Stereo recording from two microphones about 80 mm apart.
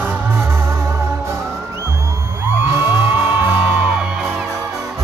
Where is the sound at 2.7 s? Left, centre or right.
Right.